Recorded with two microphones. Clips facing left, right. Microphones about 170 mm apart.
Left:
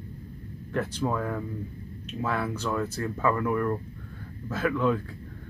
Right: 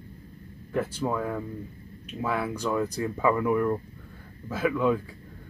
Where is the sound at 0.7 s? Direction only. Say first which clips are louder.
Even; 5° right (ahead or behind).